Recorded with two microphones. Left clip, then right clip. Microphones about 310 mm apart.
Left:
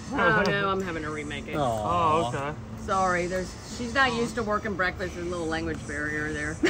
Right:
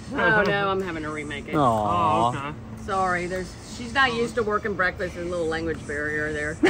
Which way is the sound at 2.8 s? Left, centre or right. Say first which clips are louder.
Right 1 dB; centre.